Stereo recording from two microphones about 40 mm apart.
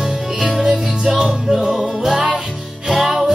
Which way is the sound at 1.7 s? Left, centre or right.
Centre.